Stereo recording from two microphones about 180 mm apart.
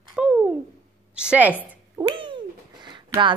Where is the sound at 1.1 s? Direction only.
5° right (ahead or behind).